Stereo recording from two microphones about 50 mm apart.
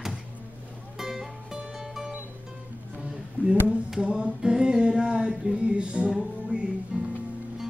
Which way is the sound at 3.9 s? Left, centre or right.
Centre.